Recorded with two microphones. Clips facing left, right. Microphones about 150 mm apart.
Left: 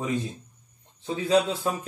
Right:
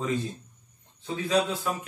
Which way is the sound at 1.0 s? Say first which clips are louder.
Left 3 dB; 25° left (ahead or behind).